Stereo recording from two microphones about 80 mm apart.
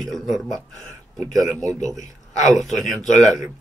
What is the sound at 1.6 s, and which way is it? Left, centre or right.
Speech, right.